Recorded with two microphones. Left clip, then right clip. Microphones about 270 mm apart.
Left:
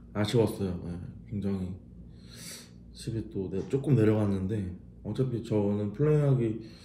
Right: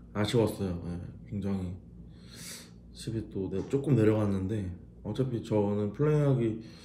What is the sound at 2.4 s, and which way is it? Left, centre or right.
Speech, centre.